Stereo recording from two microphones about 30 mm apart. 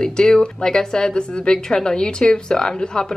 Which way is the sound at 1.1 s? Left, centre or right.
Left.